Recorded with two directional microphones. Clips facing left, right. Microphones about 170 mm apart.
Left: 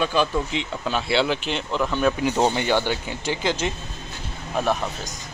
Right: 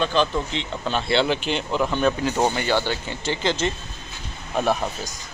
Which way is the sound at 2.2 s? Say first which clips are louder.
Left 1 dB; 20° left (ahead or behind).